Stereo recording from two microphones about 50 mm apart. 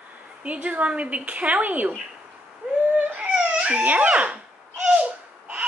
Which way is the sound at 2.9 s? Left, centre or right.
Right.